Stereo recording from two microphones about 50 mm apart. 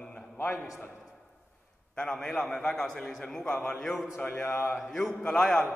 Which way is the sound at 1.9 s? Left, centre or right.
Centre.